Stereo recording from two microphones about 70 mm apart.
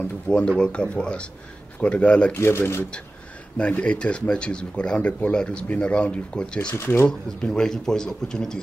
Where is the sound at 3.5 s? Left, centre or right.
Centre.